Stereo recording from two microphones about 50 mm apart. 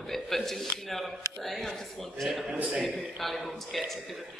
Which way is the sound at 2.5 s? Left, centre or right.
Right.